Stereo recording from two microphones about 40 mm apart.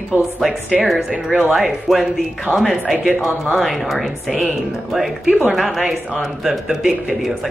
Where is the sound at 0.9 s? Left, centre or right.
Right.